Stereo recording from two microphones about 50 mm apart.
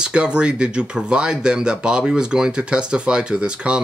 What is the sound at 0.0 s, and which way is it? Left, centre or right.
Speech, centre.